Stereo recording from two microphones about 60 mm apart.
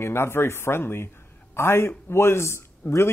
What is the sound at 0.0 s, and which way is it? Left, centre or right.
A man's voice, left.